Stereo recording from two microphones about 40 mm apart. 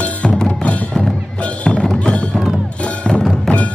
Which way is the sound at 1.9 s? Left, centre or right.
Left.